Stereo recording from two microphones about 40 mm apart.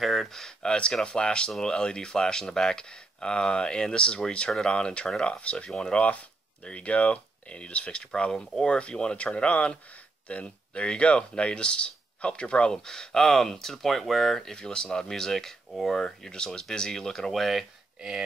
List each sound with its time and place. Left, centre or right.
0.0 s speech: centre
0.3 s speech: centre
13.2 s speech: centre
14.6 s speech: left
15.7 s speech: centre
16.0 s speech: centre
17.3 s speech: centre